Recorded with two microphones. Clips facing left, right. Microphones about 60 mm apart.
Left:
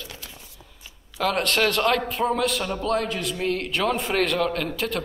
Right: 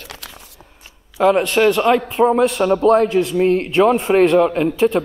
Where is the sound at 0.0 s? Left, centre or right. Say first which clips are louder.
Right 4 dB; right.